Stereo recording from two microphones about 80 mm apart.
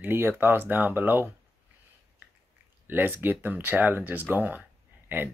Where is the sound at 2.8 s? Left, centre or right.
Right.